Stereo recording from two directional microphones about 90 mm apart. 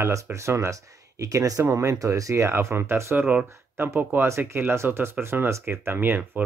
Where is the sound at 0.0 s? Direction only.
35° right (ahead or behind).